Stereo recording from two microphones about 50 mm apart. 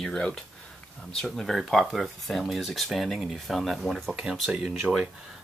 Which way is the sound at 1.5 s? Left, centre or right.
Centre.